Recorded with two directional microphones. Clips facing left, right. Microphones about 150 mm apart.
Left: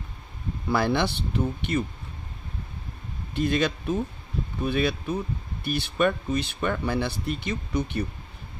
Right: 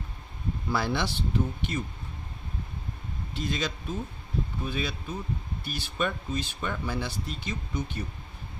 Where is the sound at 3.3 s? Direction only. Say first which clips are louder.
Left 8 dB; 60° left (ahead or behind).